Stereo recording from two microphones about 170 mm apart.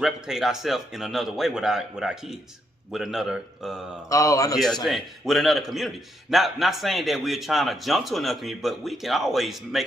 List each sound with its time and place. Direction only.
0.0 s a man's voice: centre (ahead or behind)
4.1 s a man's voice: 20° left (ahead or behind)
4.8 s a man's voice: centre (ahead or behind)